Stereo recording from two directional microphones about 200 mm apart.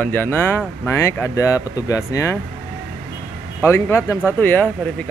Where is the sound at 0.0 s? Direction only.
10° left (ahead or behind).